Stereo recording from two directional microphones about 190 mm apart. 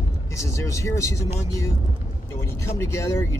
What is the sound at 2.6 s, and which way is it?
Speech, 15° left (ahead or behind).